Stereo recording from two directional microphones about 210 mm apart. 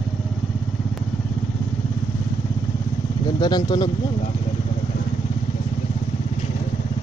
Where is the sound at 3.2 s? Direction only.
20° left (ahead or behind).